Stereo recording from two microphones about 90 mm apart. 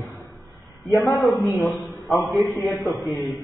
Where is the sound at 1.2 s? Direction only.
Centre (ahead or behind).